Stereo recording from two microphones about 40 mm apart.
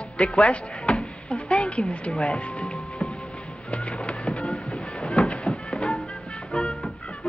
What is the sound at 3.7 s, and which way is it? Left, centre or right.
Music, left.